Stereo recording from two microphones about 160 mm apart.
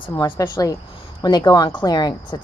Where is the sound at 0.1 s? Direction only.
25° left (ahead or behind).